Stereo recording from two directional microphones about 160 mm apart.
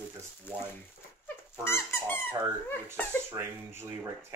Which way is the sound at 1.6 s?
15° left (ahead or behind).